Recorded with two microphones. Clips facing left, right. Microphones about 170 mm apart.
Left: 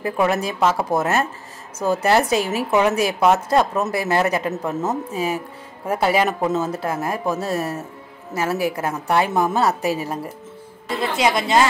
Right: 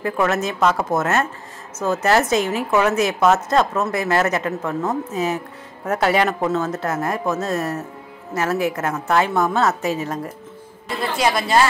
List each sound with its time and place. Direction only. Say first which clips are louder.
0.0 s a woman's voice: even; 15° left (ahead or behind)
11.0 s speech: even; 20° left (ahead or behind)